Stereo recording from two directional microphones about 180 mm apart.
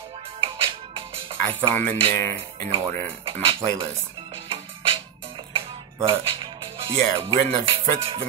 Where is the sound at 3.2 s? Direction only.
30° right (ahead or behind).